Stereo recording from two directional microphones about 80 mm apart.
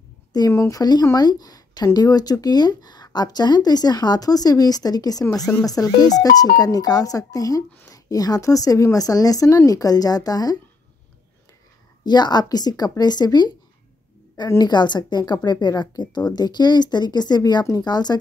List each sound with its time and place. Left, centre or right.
0.5 s a woman's voice: left
0.7 s speech: left
12.0 s speech: left
14.6 s speech: left